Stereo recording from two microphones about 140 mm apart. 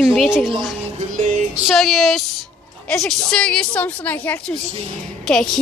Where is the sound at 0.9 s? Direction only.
55° right (ahead or behind).